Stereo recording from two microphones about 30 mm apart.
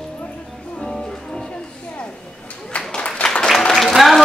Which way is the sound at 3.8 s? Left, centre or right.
Centre.